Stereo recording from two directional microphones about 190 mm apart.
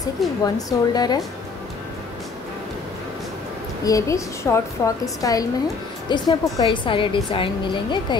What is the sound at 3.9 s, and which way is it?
A woman's voice, 15° left (ahead or behind).